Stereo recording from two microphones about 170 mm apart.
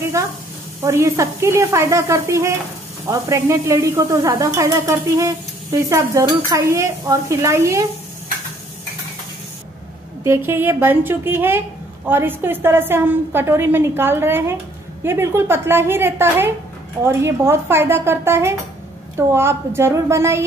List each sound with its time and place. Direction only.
0.2 s a woman's voice: 15° right (ahead or behind)
10.2 s a woman's voice: 15° right (ahead or behind)